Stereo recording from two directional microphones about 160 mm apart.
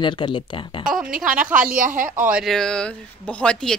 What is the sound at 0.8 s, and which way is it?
Speech, 5° right (ahead or behind).